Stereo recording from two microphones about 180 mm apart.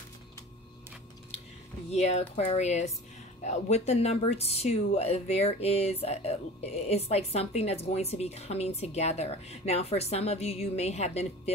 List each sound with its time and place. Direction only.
1.9 s speech: 35° left (ahead or behind)